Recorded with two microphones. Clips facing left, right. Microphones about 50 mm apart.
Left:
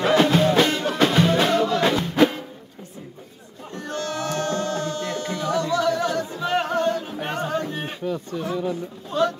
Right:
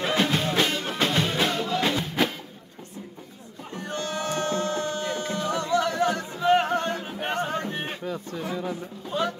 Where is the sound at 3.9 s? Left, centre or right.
Right.